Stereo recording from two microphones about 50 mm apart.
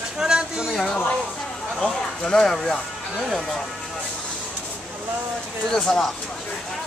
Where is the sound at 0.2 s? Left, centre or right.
Centre.